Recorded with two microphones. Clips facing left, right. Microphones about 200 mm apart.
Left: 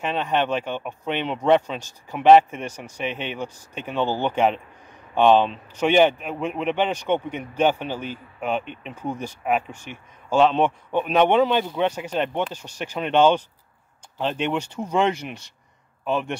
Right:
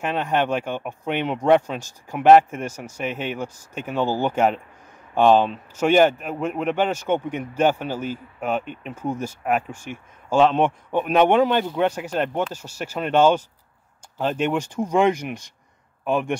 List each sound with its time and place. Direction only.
0.0 s a man's voice: 10° right (ahead or behind)
9.9 s speech: 45° right (ahead or behind)
10.3 s speech: 10° right (ahead or behind)
14.4 s speech: 10° right (ahead or behind)